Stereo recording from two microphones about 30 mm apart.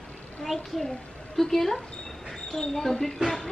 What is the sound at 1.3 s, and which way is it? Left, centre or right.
Speech, centre.